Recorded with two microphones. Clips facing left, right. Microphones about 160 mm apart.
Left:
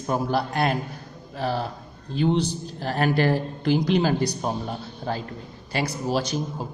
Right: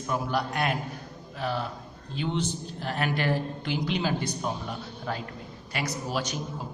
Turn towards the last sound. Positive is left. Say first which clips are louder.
# left 5 dB
turn(degrees=30)  # may be behind; listen again after turning